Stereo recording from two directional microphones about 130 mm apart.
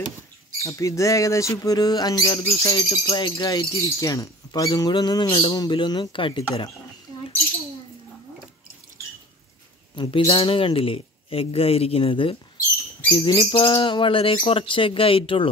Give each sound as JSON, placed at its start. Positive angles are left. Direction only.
{"t": 0.6, "sound": "a sound", "side_deg": 25}
{"t": 9.9, "sound": "bird", "side_deg": 35}
{"t": 10.3, "sound": "speech", "side_deg": 40}
{"t": 13.3, "sound": "bird", "side_deg": 35}